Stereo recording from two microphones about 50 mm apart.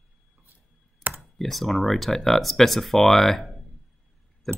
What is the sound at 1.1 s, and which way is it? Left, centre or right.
Speech, centre.